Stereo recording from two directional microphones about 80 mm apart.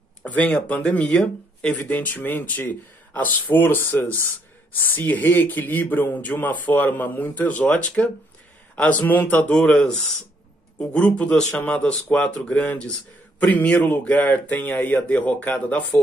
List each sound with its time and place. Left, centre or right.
0.2 s speech: centre